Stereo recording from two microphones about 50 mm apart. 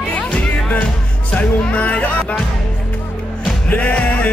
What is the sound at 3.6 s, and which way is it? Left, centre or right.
Music, left.